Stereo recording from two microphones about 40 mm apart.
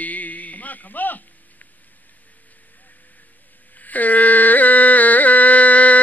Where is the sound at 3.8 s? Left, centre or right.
Left.